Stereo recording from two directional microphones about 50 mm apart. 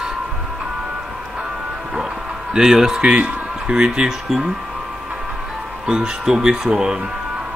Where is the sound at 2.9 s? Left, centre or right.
Right.